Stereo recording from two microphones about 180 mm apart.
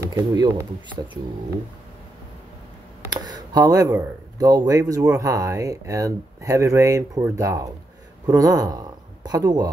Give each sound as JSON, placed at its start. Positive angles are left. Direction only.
{"t": 0.1, "sound": "speech", "side_deg": -20}
{"t": 3.1, "sound": "speech", "side_deg": -20}